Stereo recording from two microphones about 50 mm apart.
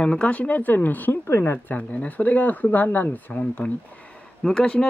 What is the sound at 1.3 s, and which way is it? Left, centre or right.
Speech, left.